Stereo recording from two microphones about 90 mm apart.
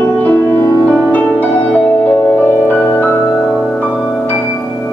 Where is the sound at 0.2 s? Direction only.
20° left (ahead or behind).